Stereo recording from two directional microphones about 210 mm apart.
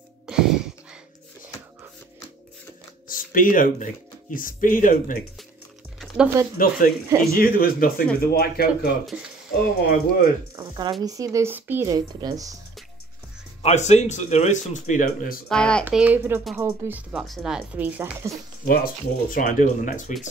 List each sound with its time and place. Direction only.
0.3 s a sound: centre (ahead or behind)
3.1 s speech: 40° left (ahead or behind)
5.9 s music: 5° right (ahead or behind)
6.6 s speech: 40° left (ahead or behind)
7.1 s speech: 15° right (ahead or behind)
7.3 s speech: 45° left (ahead or behind)
10.5 s speech: 25° right (ahead or behind)
13.6 s speech: 30° left (ahead or behind)
15.4 s speech: 5° left (ahead or behind)
15.8 s speech: 5° right (ahead or behind)
19.3 s speech: 40° left (ahead or behind)